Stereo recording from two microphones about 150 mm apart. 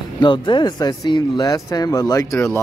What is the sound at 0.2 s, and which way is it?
Speech, 30° left (ahead or behind).